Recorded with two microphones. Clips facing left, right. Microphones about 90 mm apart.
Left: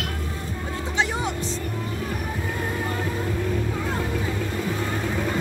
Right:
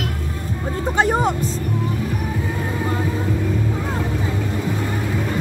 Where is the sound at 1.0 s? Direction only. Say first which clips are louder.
Right 8 dB; 45° right (ahead or behind).